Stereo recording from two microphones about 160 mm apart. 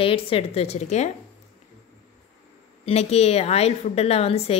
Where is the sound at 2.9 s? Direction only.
40° left (ahead or behind).